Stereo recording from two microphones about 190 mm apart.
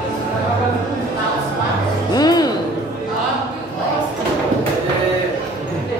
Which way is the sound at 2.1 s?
20° left (ahead or behind).